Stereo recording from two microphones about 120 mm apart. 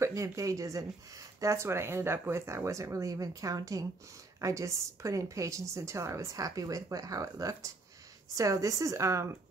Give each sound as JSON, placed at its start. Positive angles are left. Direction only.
{"t": 0.0, "sound": "speech", "side_deg": -25}